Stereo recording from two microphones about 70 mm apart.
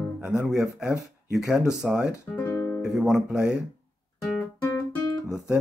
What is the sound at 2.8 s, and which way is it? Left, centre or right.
Speech, centre.